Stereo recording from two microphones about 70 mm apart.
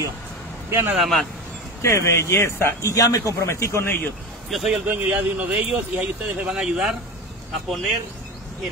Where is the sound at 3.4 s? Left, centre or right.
Left.